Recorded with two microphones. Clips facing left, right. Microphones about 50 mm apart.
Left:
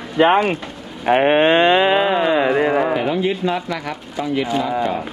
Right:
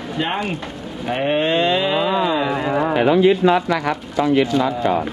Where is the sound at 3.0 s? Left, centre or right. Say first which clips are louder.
Right 5 dB; right.